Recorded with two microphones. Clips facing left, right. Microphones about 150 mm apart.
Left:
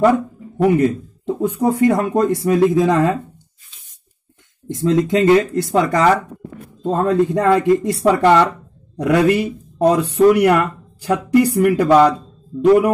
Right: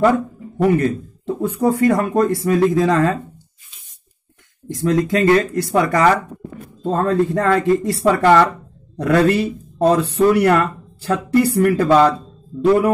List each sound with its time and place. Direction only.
0.0 s speech: 15° left (ahead or behind)
4.6 s speech: 25° left (ahead or behind)